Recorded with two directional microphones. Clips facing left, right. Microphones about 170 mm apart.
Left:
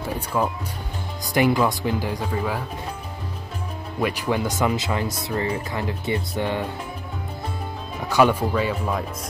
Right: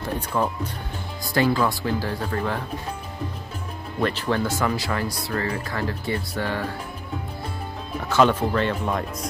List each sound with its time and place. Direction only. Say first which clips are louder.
0.0 s speech: even; 5° left (ahead or behind)
1.2 s speech: left 2 dB; 15° left (ahead or behind)
4.0 s speech: even; 15° left (ahead or behind)
8.1 s speech: left 1 dB; 10° left (ahead or behind)